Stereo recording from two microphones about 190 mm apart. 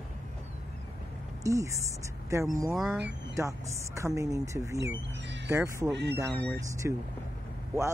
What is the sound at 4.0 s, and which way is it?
Speech, 15° right (ahead or behind).